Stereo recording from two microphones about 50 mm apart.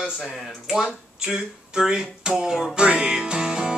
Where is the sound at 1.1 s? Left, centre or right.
Centre.